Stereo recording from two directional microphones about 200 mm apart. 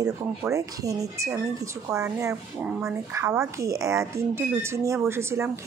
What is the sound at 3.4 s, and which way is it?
Speech, 15° right (ahead or behind).